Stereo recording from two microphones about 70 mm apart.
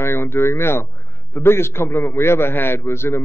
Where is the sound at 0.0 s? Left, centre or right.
Left.